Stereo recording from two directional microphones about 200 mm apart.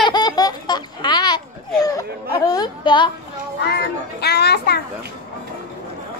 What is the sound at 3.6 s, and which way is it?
A child's voice, 55° left (ahead or behind).